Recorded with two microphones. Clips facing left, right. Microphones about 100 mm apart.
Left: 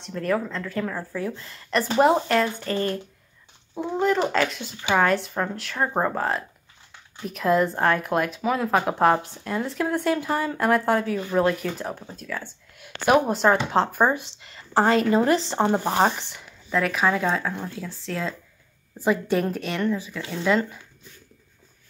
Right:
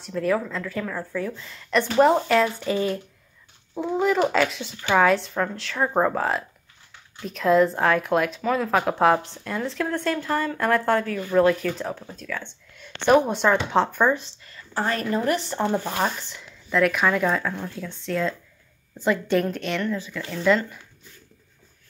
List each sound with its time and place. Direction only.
0.0 s a woman's voice: centre (ahead or behind)
14.2 s a sound: 90° left
14.9 s a woman's voice: 90° left
15.7 s speech: 30° left (ahead or behind)
16.2 s speech: 60° left (ahead or behind)
16.7 s a woman's voice: centre (ahead or behind)